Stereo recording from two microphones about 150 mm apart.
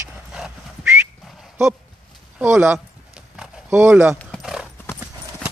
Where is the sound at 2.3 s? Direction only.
15° right (ahead or behind).